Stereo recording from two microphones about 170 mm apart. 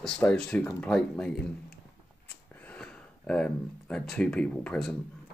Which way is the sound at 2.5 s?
10° left (ahead or behind).